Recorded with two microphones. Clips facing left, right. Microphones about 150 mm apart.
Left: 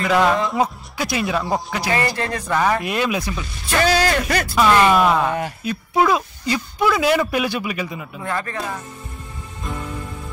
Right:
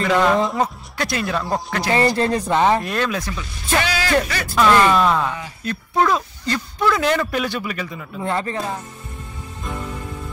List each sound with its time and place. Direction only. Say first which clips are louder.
0.0 s speech: even; 5° left (ahead or behind)
1.9 s speech: right 5 dB; 30° right (ahead or behind)
2.8 s speech: left 1 dB; 10° left (ahead or behind)
3.8 s speech: left 5 dB; 45° left (ahead or behind)
4.6 s speech: even; 15° left (ahead or behind)
8.2 s speech: right 3 dB; 25° right (ahead or behind)
9.6 s music: even; centre (ahead or behind)